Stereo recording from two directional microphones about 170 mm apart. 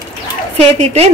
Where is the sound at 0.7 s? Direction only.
35° right (ahead or behind).